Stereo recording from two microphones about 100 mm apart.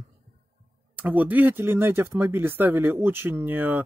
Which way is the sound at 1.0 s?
15° right (ahead or behind).